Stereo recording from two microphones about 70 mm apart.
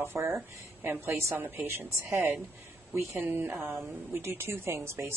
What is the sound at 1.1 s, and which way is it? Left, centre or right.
A woman's voice, right.